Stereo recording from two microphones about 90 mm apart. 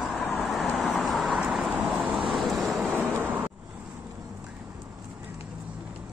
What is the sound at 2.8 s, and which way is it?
Vehicle, 20° right (ahead or behind).